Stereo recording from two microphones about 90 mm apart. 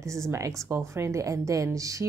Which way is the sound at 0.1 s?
35° right (ahead or behind).